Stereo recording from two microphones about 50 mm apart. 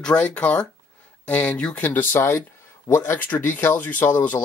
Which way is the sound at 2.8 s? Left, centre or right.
Left.